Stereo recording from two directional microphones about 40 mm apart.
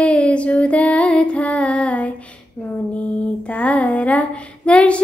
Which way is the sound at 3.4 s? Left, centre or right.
Left.